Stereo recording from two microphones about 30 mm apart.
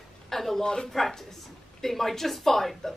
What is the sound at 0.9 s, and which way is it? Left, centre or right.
A woman's voice, centre.